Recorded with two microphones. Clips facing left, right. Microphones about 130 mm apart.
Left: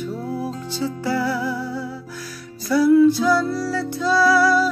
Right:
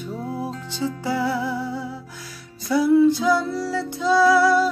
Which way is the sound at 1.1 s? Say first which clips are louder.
Left 1 dB; 20° right (ahead or behind).